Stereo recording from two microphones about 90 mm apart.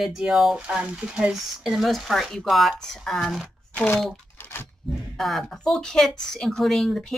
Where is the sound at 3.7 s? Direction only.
20° left (ahead or behind).